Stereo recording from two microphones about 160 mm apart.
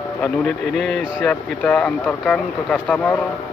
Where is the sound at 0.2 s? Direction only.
Centre (ahead or behind).